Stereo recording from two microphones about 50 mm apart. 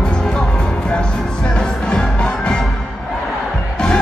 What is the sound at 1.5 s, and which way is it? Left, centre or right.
Music, centre.